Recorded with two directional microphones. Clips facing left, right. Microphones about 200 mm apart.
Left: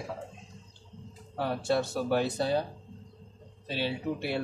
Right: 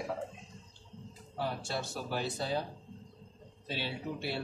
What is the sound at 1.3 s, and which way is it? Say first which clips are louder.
A man's voice: left 8 dB; 55° left (ahead or behind).